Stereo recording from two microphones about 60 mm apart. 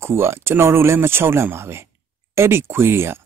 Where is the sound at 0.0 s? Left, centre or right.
Right.